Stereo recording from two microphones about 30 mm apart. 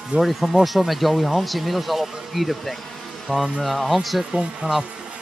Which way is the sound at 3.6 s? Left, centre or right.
Centre.